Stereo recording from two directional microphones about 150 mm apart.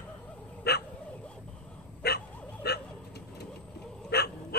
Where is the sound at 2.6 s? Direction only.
90° left.